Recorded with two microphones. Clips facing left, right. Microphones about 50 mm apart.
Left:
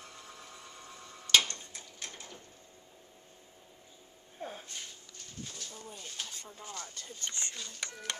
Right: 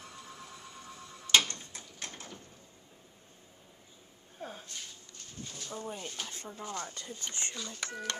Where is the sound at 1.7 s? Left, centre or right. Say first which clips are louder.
Right 1 dB; right.